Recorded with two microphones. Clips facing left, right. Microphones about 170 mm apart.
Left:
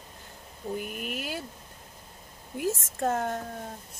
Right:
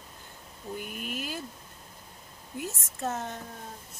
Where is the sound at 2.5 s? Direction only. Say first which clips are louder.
Left 7 dB; 55° left (ahead or behind).